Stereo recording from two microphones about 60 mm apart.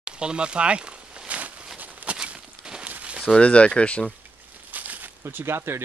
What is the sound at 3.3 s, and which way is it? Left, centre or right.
Speech, centre.